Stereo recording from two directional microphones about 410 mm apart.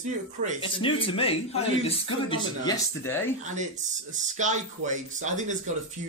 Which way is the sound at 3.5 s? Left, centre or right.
Centre.